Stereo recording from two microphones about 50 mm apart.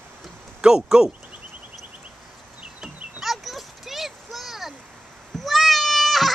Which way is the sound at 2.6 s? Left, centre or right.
Centre.